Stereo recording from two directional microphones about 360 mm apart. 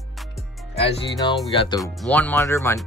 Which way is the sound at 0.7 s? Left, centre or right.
Centre.